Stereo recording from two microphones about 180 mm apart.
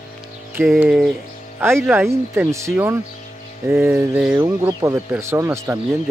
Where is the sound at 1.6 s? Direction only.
15° right (ahead or behind).